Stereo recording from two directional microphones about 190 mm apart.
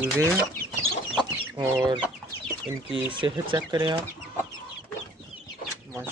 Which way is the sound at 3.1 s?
25° right (ahead or behind).